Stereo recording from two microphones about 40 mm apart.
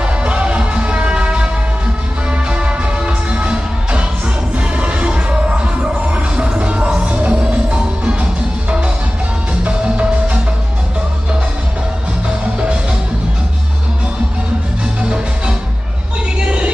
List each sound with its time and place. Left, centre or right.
0.0 s music: right
2.5 s music: right
16.4 s music: right